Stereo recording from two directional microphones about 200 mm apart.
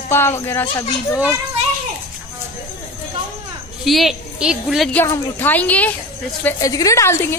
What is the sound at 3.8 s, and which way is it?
A woman's voice, centre (ahead or behind).